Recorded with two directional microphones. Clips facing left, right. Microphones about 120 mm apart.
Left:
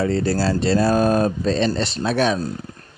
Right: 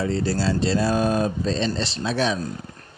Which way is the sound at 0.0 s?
60° left (ahead or behind).